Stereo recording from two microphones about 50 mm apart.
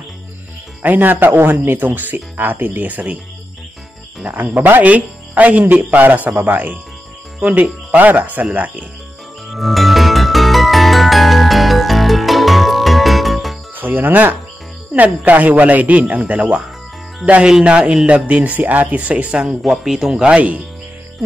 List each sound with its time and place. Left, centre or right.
0.8 s speech: right
4.3 s speech: right
7.9 s speech: right
9.5 s music: centre
13.7 s speech: right
17.5 s speech: centre
19.4 s speech: centre
20.2 s speech: right